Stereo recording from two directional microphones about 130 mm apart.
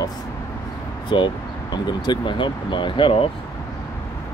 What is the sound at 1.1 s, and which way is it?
Speech, 35° left (ahead or behind).